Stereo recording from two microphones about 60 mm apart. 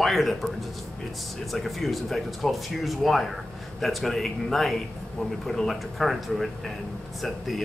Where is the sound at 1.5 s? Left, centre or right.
Centre.